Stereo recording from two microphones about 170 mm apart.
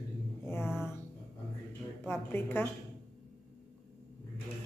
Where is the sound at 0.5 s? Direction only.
15° left (ahead or behind).